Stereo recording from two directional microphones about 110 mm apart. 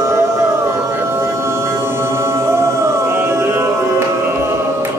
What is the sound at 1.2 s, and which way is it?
Music, 25° right (ahead or behind).